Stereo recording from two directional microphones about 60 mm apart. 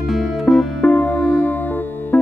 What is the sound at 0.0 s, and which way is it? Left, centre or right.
Music, centre.